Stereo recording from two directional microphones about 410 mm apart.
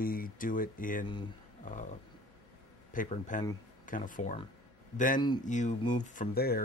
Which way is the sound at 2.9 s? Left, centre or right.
Centre.